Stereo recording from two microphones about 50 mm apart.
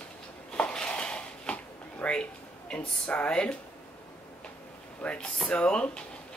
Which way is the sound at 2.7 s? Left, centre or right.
Left.